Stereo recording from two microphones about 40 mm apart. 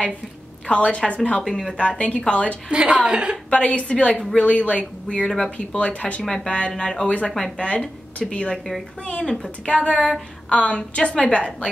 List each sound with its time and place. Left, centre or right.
0.7 s speech: left
1.4 s speech: centre
1.8 s speech: left
2.7 s a woman's voice: right
3.4 s speech: left
5.2 s speech: centre
5.8 s speech: left; by 9.5 s centre
9.7 s speech: left